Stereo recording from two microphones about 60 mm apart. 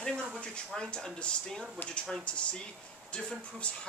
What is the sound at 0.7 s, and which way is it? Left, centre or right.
Speech, centre.